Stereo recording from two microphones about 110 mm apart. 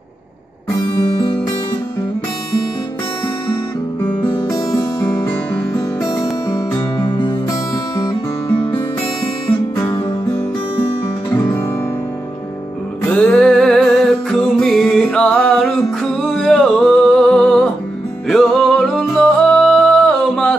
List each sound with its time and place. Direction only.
0.9 s music: 50° left (ahead or behind)
4.2 s music: 30° left (ahead or behind)
7.0 s music: 45° left (ahead or behind)
13.1 s music: 10° left (ahead or behind)